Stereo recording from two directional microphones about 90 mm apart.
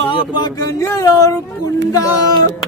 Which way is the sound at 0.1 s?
55° left (ahead or behind).